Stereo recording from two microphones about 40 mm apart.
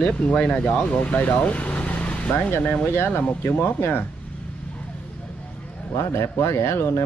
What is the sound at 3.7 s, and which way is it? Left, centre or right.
Speech, left.